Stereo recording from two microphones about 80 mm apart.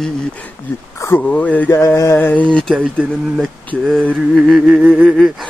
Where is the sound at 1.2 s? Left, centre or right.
Centre.